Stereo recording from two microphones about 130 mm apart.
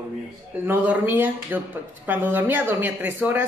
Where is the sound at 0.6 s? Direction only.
15° right (ahead or behind).